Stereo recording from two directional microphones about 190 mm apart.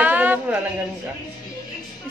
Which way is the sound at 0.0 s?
10° right (ahead or behind).